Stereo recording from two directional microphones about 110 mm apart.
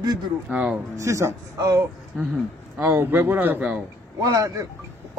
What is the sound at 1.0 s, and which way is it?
Speech, 30° right (ahead or behind).